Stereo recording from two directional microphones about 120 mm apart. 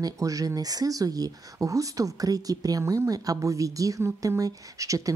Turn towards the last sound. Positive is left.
turn(degrees=-25)  # may be behind; listen again after turning